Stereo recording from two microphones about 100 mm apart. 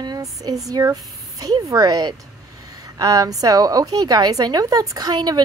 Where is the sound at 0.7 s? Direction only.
35° right (ahead or behind).